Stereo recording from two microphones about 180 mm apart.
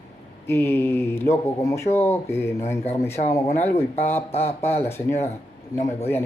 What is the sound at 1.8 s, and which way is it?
Speech, 40° left (ahead or behind).